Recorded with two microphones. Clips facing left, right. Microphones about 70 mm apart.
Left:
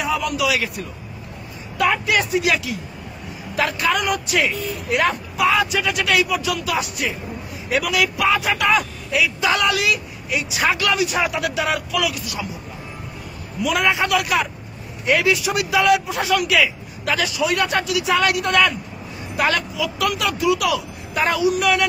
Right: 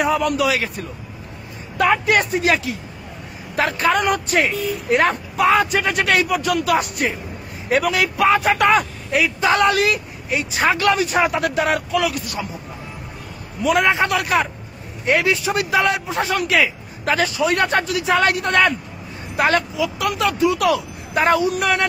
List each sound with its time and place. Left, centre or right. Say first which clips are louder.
0.0 s a man's voice: right 3 dB; right
2.0 s speech: right 2 dB; right
13.6 s speech: right 3 dB; right